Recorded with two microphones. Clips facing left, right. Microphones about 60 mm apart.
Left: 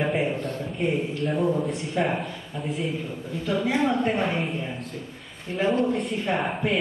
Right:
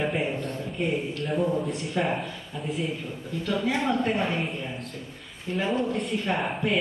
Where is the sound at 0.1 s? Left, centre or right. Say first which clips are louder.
Left 3 dB; centre.